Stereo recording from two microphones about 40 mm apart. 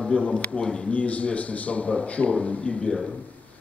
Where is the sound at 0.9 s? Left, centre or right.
Left.